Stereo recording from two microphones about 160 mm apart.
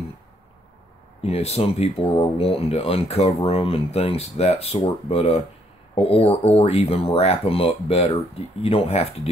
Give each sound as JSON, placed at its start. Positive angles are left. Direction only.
{"t": 1.2, "sound": "speech", "side_deg": 40}